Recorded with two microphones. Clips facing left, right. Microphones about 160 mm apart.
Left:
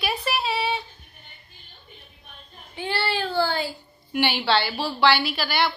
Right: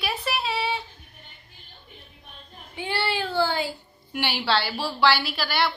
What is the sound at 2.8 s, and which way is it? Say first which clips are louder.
Speech: left 1 dB; 20° right (ahead or behind).